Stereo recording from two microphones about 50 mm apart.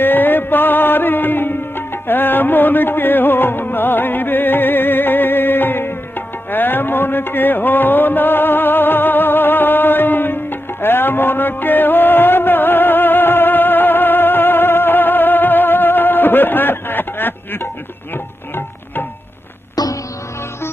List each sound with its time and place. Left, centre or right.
0.0 s music: left